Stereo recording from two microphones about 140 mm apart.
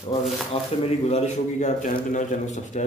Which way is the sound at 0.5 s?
45° left (ahead or behind).